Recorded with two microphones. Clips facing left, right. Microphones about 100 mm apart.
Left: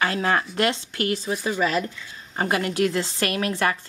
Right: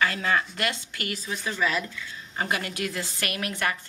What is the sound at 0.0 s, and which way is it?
A woman's voice, 35° left (ahead or behind).